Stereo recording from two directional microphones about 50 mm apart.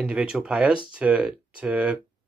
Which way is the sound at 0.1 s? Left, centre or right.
Right.